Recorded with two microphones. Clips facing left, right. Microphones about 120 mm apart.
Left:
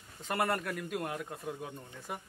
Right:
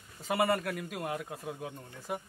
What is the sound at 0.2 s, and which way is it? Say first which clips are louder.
A man's voice: right 3 dB; centre (ahead or behind).